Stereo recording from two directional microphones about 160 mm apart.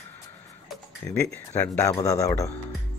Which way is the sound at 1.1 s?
15° left (ahead or behind).